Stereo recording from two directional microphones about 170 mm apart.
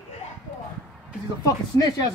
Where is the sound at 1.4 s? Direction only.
20° left (ahead or behind).